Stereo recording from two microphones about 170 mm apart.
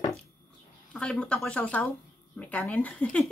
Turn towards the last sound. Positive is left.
turn(degrees=5)  # may be behind; listen again after turning